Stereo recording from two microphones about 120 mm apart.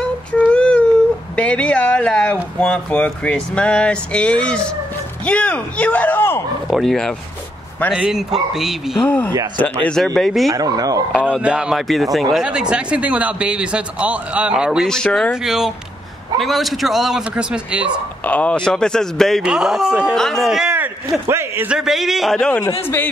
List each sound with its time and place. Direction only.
0.0 s a sound: 10° left (ahead or behind)
1.3 s speech: 10° left (ahead or behind)
6.7 s a man's voice: centre (ahead or behind)
9.0 s a man's voice: 15° left (ahead or behind)
10.5 s speech: 30° right (ahead or behind)
11.4 s speech: 5° right (ahead or behind)
14.9 s a man's voice: 5° left (ahead or behind)
18.2 s a man's voice: 10° left (ahead or behind); by 20.2 s 10° right (ahead or behind)
20.2 s speech: centre (ahead or behind)
21.3 s a man's voice: 20° right (ahead or behind)
21.6 s a man's voice: 5° right (ahead or behind)